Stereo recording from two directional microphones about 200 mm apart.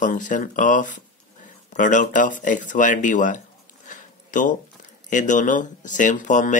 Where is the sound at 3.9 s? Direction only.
40° left (ahead or behind).